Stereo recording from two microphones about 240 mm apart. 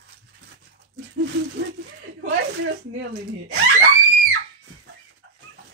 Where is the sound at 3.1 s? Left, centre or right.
Right.